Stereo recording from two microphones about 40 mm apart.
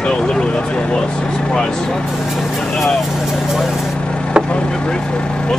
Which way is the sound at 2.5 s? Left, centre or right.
Centre.